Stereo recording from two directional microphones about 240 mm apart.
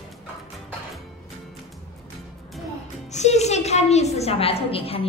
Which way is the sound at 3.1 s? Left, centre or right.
Left.